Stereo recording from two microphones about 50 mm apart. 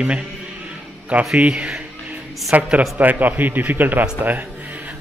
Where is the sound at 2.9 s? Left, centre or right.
Right.